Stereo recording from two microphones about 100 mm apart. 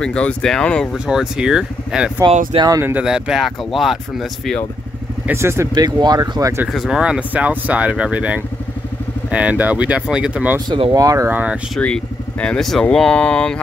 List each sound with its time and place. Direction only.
0.0 s speech: 10° left (ahead or behind)
0.9 s speech: 5° right (ahead or behind)
2.2 s speech: 60° right (ahead or behind)
3.0 s speech: 5° right (ahead or behind)
5.3 s speech: 25° right (ahead or behind)
5.8 s speech: 45° right (ahead or behind)
6.7 s speech: 5° right (ahead or behind)
10.9 s speech: 35° right (ahead or behind)
11.2 s speech: 15° right (ahead or behind)
11.8 s speech: 10° left (ahead or behind)